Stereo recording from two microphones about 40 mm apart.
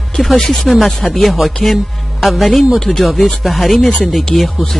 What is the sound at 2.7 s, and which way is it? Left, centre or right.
Speech, centre.